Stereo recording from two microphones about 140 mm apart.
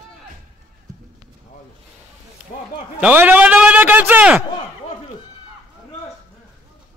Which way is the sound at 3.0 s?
10° right (ahead or behind).